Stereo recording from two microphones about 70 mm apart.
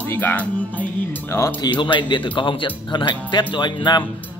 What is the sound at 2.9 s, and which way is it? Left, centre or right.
Speech, left.